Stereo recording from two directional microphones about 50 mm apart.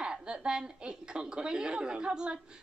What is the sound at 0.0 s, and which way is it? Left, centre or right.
A woman's voice, centre.